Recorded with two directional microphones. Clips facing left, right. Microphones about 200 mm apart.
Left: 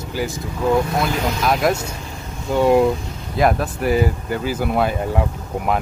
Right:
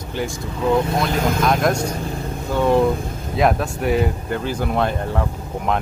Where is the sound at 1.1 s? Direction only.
50° right (ahead or behind).